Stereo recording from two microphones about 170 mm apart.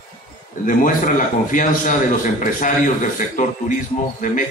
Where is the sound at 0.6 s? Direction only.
50° left (ahead or behind).